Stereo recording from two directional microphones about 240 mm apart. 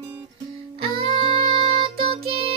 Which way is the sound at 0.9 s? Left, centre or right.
Right.